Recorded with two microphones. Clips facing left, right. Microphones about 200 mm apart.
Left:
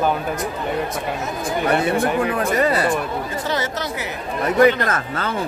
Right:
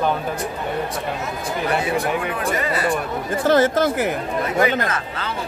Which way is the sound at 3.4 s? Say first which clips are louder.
Right 13 dB; 50° right (ahead or behind).